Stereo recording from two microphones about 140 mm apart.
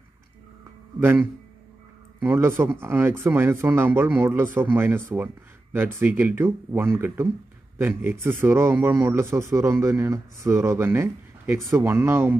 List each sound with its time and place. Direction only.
0.9 s a man's voice: 15° right (ahead or behind)